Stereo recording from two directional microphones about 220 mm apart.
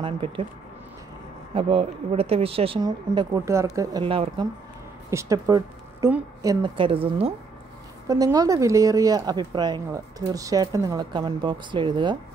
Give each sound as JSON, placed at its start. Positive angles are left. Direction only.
{"t": 0.0, "sound": "speech", "side_deg": -25}
{"t": 1.5, "sound": "speech", "side_deg": -25}
{"t": 8.1, "sound": "speech", "side_deg": -15}